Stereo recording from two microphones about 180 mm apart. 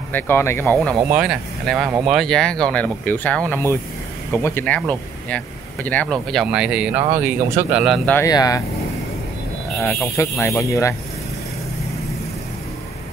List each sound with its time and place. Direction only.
0.1 s speech: 10° left (ahead or behind)
1.0 s speech: 5° right (ahead or behind)
6.3 s speech: 5° right (ahead or behind)
8.0 s speech: 10° left (ahead or behind)
8.3 s speech: 20° left (ahead or behind)
10.4 s speech: 15° left (ahead or behind)